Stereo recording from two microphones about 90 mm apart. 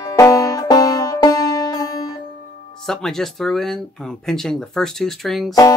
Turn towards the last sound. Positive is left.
turn(degrees=0)  # may be behind; listen again after turning